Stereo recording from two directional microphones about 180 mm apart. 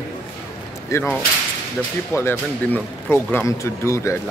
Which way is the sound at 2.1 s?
15° left (ahead or behind).